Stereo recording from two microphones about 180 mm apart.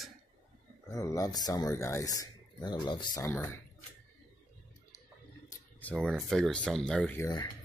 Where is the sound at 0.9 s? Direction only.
20° left (ahead or behind).